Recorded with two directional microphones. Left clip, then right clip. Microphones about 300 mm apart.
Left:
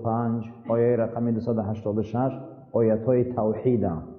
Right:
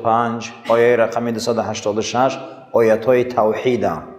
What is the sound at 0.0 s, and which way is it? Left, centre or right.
A man's voice, centre.